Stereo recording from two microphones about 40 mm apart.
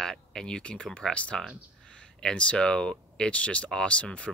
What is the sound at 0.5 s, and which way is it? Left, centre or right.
Speech, left.